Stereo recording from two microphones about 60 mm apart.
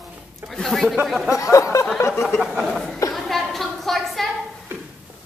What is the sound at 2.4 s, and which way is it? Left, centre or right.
Speech, centre.